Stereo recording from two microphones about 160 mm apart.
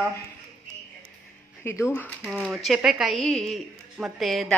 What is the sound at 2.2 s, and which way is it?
Speech, centre (ahead or behind).